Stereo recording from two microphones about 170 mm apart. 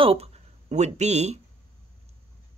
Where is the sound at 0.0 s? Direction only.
35° right (ahead or behind).